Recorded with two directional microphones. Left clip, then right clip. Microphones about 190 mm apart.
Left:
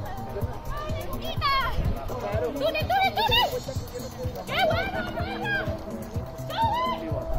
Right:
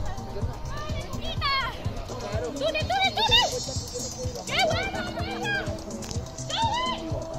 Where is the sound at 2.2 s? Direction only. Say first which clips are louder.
Left 3 dB; 30° left (ahead or behind).